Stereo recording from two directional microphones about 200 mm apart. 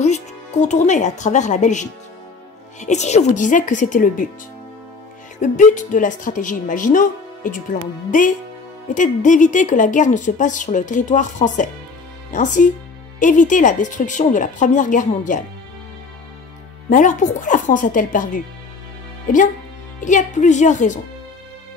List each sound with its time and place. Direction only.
0.0 s speech: 35° left (ahead or behind)
5.4 s speech: 40° left (ahead or behind)
8.8 s speech: 40° left (ahead or behind)
16.9 s speech: 40° left (ahead or behind)
20.0 s speech: 40° left (ahead or behind)